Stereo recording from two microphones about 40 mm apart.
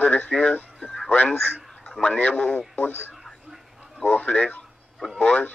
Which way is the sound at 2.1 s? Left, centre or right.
Left.